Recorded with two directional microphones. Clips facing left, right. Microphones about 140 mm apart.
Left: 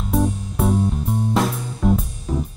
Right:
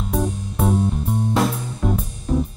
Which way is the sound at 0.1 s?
Centre (ahead or behind).